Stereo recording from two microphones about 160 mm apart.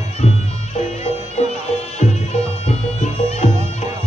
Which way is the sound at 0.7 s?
45° left (ahead or behind).